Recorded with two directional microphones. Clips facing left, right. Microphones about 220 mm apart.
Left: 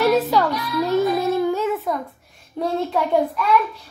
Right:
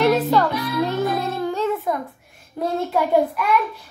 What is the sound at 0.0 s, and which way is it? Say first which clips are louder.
Music: even; 5° left (ahead or behind).